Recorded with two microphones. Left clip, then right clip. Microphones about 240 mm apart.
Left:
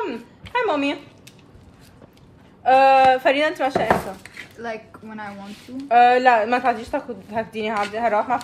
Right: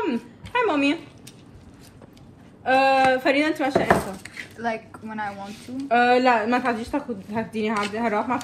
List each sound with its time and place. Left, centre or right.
0.0 s a sound: left
2.6 s a woman's voice: left
4.6 s a woman's voice: right
5.9 s a woman's voice: left